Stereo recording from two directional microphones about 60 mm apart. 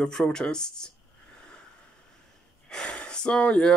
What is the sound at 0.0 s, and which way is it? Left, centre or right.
Speech, centre.